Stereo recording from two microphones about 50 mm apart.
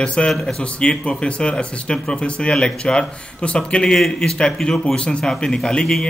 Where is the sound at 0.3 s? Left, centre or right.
Centre.